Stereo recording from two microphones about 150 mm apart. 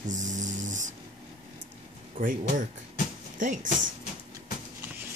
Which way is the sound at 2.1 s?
65° right (ahead or behind).